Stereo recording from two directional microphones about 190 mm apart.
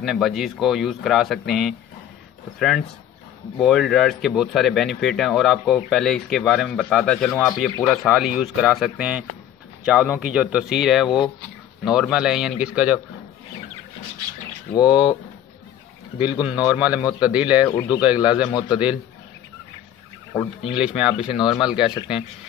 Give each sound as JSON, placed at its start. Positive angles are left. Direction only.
{"t": 0.0, "sound": "speech", "side_deg": 0}
{"t": 3.5, "sound": "speech", "side_deg": 0}
{"t": 14.7, "sound": "speech", "side_deg": 25}
{"t": 16.2, "sound": "a man's voice", "side_deg": -5}
{"t": 18.5, "sound": "speech", "side_deg": 25}
{"t": 20.7, "sound": "speech", "side_deg": -5}